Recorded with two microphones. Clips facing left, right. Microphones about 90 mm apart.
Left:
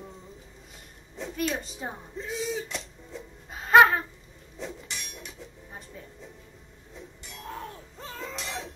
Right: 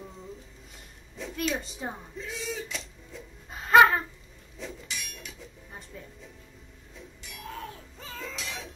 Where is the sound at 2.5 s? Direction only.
20° left (ahead or behind).